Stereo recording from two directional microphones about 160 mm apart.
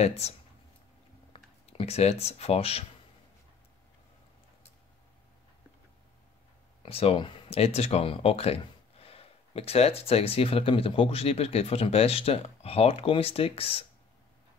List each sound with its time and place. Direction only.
0.0 s speech: 40° left (ahead or behind)
1.3 s speech: 40° left (ahead or behind)
6.8 s speech: 40° left (ahead or behind)